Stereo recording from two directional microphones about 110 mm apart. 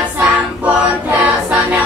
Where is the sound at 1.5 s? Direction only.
15° right (ahead or behind).